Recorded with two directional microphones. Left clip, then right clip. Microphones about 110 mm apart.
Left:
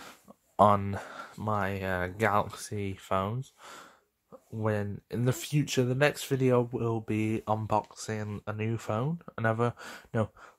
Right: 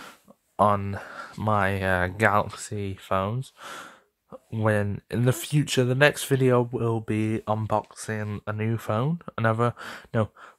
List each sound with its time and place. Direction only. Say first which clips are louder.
0.6 s speech: right 1 dB; 5° right (ahead or behind)
1.3 s speech: right 7 dB; 35° right (ahead or behind); by 3.3 s 20° right (ahead or behind)
3.6 s speech: right 9 dB; 35° right (ahead or behind); by 10.5 s 20° right (ahead or behind)